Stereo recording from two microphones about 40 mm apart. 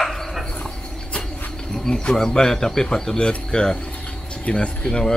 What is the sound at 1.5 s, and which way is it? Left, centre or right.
Speech, centre.